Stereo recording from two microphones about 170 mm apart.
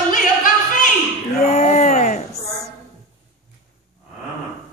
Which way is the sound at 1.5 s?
40° left (ahead or behind).